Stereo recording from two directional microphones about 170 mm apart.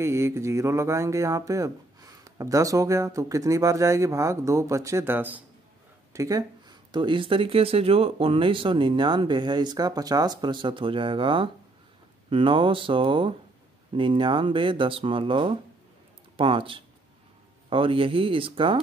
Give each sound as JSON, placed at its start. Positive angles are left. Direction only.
{"t": 0.0, "sound": "speech", "side_deg": -15}